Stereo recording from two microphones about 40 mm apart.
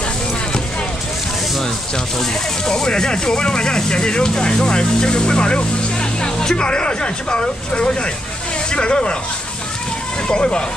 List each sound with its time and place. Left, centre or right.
2.6 s speech: centre
10.2 s speech: left